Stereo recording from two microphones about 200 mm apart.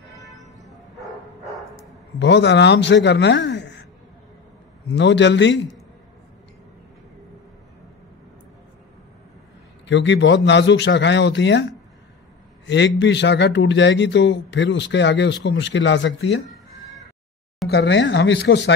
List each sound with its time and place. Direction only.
2.1 s speech: 60° left (ahead or behind)
4.9 s speech: 60° left (ahead or behind)
9.8 s speech: 65° left (ahead or behind)
12.6 s speech: 60° left (ahead or behind)
17.6 s speech: 55° left (ahead or behind)